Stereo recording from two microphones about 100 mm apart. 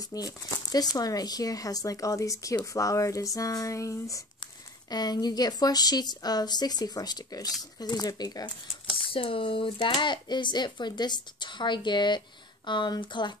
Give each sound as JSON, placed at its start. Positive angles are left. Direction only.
{"t": 0.1, "sound": "speech", "side_deg": 40}
{"t": 8.9, "sound": "speech", "side_deg": 65}